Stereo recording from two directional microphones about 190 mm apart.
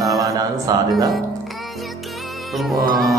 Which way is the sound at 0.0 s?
20° right (ahead or behind).